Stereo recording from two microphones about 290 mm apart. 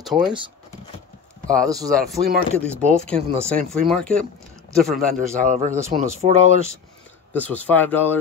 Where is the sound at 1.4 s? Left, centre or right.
Centre.